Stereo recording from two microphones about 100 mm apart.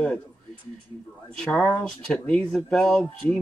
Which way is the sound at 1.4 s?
10° left (ahead or behind).